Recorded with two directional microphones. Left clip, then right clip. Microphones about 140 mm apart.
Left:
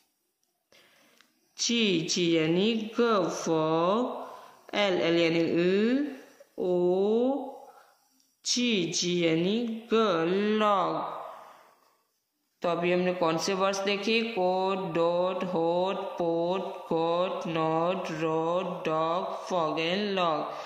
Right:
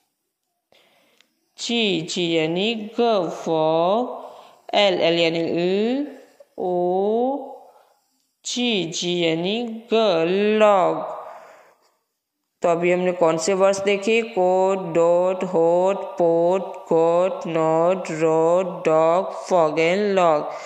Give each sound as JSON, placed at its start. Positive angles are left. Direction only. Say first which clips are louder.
{"t": 1.6, "sound": "speech", "louder": "right 5 dB", "side_deg": -30}
{"t": 8.5, "sound": "speech", "louder": "right 5 dB", "side_deg": -35}
{"t": 12.5, "sound": "a man's voice", "louder": "right 8 dB", "side_deg": -35}